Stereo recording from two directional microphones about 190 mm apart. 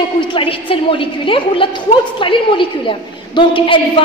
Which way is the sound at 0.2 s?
25° left (ahead or behind).